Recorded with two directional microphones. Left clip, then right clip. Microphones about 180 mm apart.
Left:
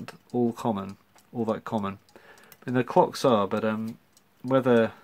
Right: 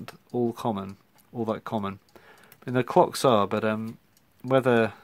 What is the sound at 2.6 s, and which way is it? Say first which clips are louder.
Speech: right 1 dB; 35° right (ahead or behind).